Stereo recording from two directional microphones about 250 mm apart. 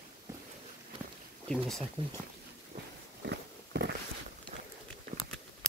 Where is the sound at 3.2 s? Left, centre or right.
Right.